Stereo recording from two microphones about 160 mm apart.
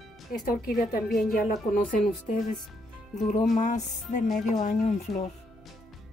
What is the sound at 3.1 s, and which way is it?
Music, 45° left (ahead or behind).